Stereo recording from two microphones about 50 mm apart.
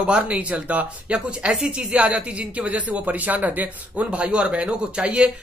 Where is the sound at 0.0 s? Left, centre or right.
Right.